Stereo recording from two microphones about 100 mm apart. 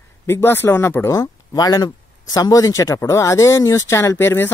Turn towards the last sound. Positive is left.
turn(degrees=25)  # may be behind; listen again after turning